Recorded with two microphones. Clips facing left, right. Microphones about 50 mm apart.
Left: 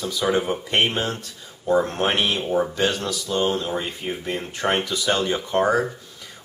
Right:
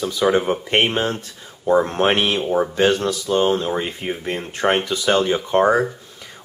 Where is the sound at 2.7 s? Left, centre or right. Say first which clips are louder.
Right 6 dB; right.